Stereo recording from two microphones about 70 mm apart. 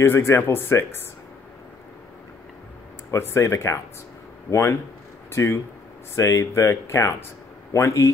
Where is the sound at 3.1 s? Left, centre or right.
Left.